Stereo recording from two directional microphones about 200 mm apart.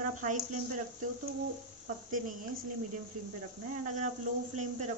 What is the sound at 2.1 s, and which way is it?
Speech, 40° right (ahead or behind).